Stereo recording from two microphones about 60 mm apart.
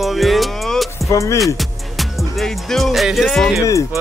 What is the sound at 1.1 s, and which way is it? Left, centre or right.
Speech, left.